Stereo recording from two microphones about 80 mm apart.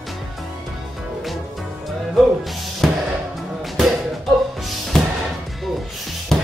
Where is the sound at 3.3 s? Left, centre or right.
Centre.